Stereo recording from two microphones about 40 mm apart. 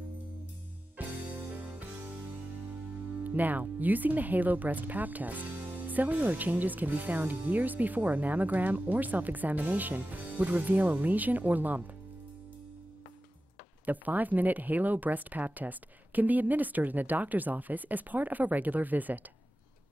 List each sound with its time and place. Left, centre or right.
1.0 s music: right
3.3 s speech: right
13.8 s speech: right